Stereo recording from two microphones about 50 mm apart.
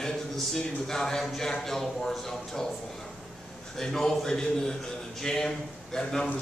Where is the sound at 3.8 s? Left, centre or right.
Centre.